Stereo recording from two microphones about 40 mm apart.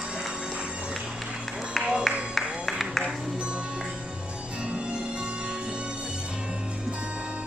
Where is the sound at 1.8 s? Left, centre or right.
Right.